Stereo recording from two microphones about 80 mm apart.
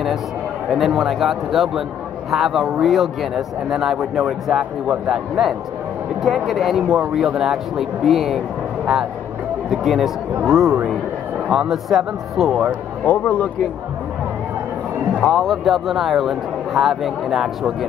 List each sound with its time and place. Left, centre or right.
0.7 s a man's voice: centre
9.7 s a man's voice: centre
13.0 s speech: left
15.1 s a man's voice: centre